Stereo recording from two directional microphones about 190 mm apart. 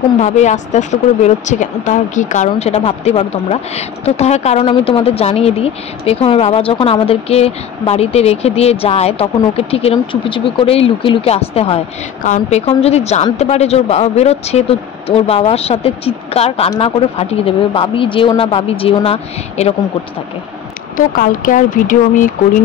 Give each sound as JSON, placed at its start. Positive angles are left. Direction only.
{"t": 0.2, "sound": "a woman's voice", "side_deg": 40}
{"t": 21.1, "sound": "speech", "side_deg": 45}